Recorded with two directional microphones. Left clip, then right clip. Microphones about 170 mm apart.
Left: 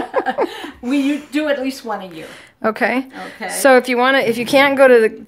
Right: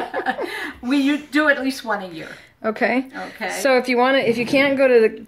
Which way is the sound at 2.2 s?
50° left (ahead or behind).